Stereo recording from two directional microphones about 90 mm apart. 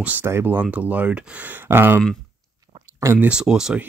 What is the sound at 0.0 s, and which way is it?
Speech, 20° right (ahead or behind).